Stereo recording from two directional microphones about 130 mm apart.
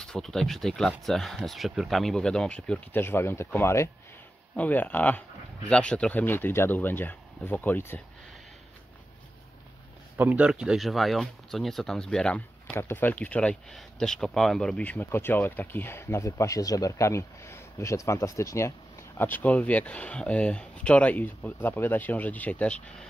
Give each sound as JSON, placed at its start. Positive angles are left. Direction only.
{"t": 0.0, "sound": "speech", "side_deg": 5}
{"t": 10.1, "sound": "speech", "side_deg": -15}